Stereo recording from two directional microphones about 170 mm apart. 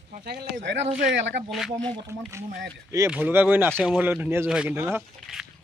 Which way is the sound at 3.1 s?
10° right (ahead or behind).